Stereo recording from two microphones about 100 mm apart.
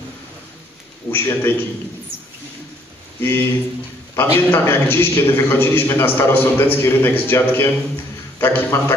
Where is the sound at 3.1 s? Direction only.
25° left (ahead or behind).